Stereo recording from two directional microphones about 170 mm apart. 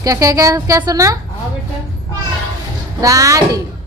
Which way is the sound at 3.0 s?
20° right (ahead or behind).